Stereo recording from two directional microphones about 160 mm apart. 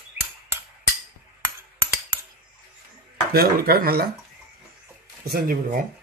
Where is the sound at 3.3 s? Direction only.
70° right (ahead or behind).